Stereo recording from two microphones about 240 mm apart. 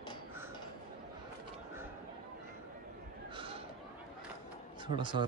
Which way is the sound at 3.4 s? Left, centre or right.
Right.